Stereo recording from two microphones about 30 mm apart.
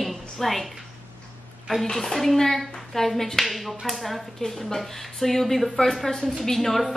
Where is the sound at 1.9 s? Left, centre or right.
Centre.